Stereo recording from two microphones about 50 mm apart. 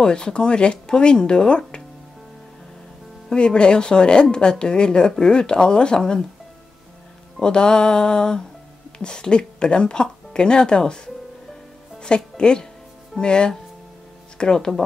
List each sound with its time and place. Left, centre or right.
0.0 s speech: centre
3.3 s speech: centre
7.4 s speech: centre
12.0 s speech: centre